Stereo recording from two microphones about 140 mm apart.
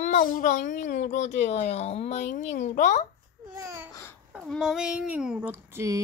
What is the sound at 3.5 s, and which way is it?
Babbling, 20° right (ahead or behind).